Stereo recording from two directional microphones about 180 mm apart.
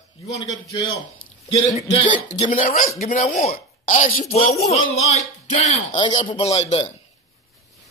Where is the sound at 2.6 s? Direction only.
50° left (ahead or behind).